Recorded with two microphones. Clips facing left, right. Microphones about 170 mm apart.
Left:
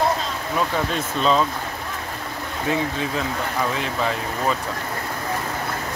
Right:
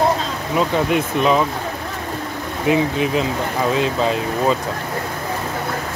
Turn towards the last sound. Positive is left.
turn(degrees=-20)  # may be behind; listen again after turning